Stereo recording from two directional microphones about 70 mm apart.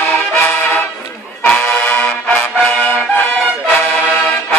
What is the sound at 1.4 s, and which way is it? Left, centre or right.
Music, centre.